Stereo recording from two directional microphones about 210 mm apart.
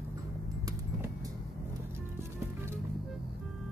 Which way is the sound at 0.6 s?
15° right (ahead or behind).